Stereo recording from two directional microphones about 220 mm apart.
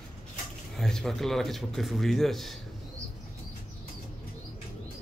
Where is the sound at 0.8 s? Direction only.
Centre (ahead or behind).